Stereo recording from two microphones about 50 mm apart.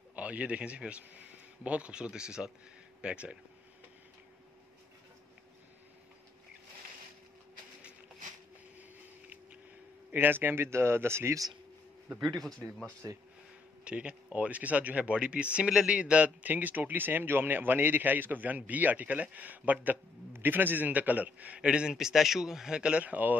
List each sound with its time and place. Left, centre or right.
0.1 s a man's voice: right
10.1 s speech: right
12.2 s a man's voice: centre
12.5 s speech: centre
13.8 s speech: right
21.6 s a man's voice: centre
22.8 s speech: right